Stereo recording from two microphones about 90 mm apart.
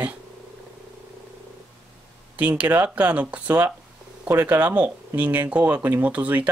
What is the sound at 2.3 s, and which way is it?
Speech, 15° right (ahead or behind).